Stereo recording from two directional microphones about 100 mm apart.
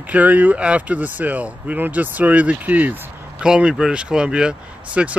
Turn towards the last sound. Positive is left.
turn(degrees=-10)  # may be behind; listen again after turning